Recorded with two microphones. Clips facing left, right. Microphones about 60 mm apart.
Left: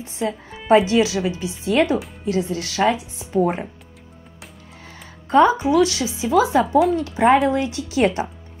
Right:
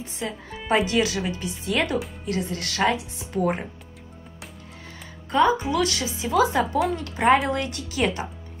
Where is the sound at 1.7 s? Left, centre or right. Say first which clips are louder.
Left 7 dB; left.